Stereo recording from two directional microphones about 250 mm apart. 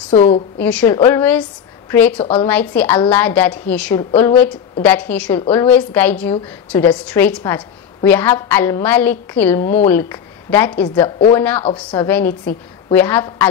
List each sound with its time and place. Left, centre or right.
0.1 s a woman's voice: left
0.6 s a woman's voice: centre
11.6 s a woman's voice: centre
12.1 s a woman's voice: centre